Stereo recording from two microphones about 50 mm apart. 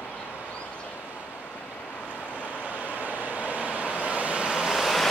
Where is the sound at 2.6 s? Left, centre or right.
Right.